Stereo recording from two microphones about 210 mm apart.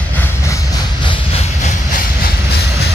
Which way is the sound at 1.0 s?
25° left (ahead or behind).